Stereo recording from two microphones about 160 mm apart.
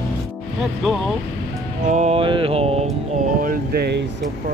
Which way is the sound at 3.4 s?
70° right (ahead or behind).